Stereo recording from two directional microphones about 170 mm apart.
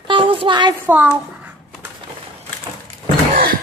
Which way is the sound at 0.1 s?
30° right (ahead or behind).